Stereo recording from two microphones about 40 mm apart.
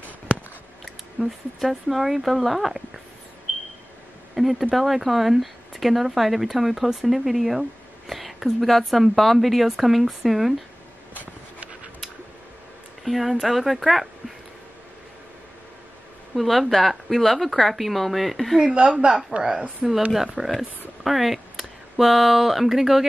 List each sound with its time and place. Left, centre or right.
1.2 s speech: centre
4.4 s speech: centre
8.1 s whispering: centre
8.5 s speech: centre
13.0 s speech: centre
16.3 s speech: centre
18.6 s speech: right
19.8 s speech: centre